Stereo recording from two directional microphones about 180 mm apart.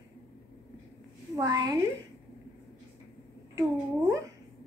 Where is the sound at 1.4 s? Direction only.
15° right (ahead or behind).